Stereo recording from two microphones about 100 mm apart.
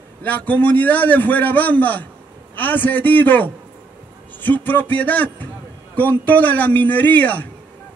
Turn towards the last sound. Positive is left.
turn(degrees=15)  # may be behind; listen again after turning